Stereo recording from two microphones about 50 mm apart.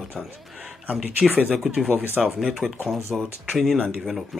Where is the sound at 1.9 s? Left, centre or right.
Right.